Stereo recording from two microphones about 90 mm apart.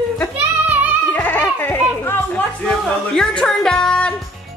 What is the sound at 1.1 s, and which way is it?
Goat, 20° left (ahead or behind).